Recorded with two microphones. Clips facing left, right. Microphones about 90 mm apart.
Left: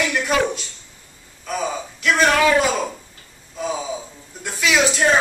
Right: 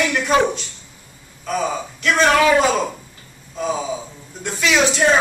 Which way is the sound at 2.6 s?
10° right (ahead or behind).